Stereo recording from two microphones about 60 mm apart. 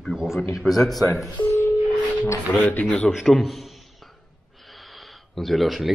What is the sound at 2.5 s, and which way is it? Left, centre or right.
Speech, left.